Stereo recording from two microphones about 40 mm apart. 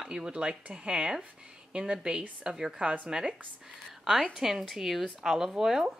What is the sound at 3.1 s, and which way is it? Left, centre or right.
Speech, centre.